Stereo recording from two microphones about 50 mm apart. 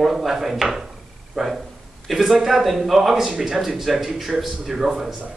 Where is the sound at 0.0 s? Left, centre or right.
Centre.